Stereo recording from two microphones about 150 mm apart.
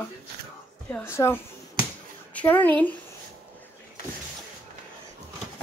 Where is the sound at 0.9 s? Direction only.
15° left (ahead or behind).